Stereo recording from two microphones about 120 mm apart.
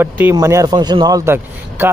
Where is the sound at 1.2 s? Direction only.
20° right (ahead or behind).